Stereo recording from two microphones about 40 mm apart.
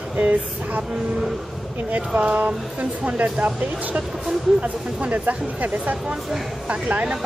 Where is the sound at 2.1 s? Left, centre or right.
Right.